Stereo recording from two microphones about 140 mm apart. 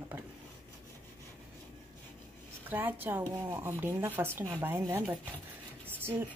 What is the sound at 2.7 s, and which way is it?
Speech, 15° right (ahead or behind).